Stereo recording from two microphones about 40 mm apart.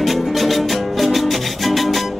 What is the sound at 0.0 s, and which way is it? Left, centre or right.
Music, centre.